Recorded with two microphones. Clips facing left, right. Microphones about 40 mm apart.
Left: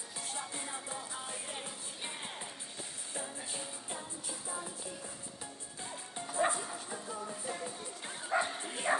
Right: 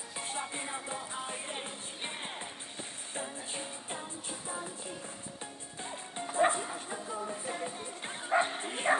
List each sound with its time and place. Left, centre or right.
0.2 s music: right
5.8 s music: right